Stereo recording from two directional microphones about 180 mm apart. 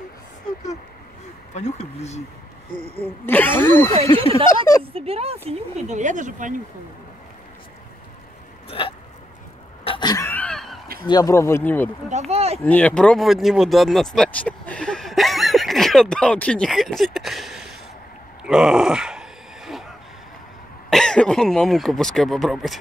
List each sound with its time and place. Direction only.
1.5 s speech: 40° left (ahead or behind)
3.3 s speech: 10° left (ahead or behind)
4.0 s speech: 30° right (ahead or behind)
8.6 s hiccup: 30° left (ahead or behind)
9.8 s a sound: 25° left (ahead or behind); by 10.8 s centre (ahead or behind)
11.1 s speech: 20° left (ahead or behind)
12.1 s speech: 35° right (ahead or behind)
12.6 s speech: 10° left (ahead or behind)
18.4 s groan: 5° right (ahead or behind)
20.9 s speech: 5° left (ahead or behind)